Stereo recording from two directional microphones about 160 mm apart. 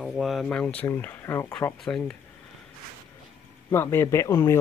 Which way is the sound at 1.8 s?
5° left (ahead or behind).